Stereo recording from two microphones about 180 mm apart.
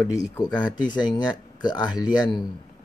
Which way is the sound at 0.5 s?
25° left (ahead or behind).